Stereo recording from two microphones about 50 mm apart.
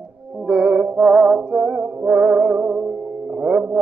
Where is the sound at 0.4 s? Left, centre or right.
Centre.